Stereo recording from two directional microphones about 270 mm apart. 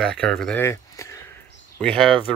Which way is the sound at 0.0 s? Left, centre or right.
Centre.